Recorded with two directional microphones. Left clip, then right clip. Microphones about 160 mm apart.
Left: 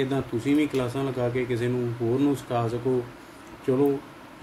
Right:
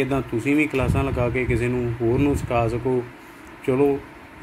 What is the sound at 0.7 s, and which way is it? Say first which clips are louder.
Speech: right 4 dB; 30° right (ahead or behind).